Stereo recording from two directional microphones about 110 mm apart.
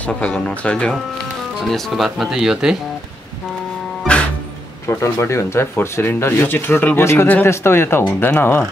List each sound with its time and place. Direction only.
0.0 s speech: 10° left (ahead or behind); by 2.8 s 5° right (ahead or behind)
4.0 s music: 10° left (ahead or behind)
4.8 s speech: 25° left (ahead or behind)